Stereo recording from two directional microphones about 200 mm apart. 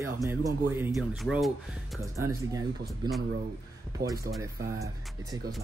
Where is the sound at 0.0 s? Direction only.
15° right (ahead or behind).